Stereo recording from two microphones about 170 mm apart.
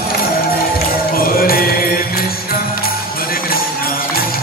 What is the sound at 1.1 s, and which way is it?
Music, 60° left (ahead or behind).